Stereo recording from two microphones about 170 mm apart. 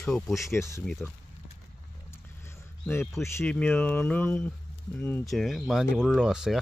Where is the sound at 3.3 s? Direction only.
10° left (ahead or behind).